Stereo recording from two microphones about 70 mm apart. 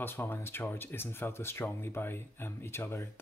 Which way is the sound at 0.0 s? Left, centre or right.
Left.